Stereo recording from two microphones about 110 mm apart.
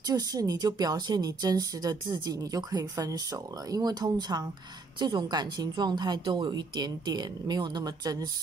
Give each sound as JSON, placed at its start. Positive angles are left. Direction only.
{"t": 0.0, "sound": "speech", "side_deg": -35}